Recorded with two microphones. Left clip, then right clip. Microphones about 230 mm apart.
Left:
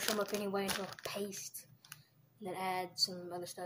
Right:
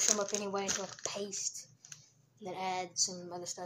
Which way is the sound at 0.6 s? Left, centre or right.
Left.